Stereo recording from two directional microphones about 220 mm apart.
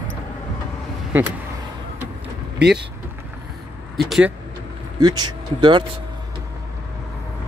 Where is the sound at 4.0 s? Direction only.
Centre (ahead or behind).